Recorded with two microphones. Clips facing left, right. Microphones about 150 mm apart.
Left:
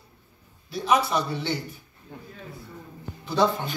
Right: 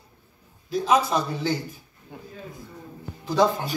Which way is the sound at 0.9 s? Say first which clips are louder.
Right 1 dB; 90° right.